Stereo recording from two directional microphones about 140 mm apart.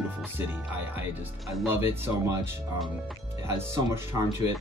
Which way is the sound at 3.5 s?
15° right (ahead or behind).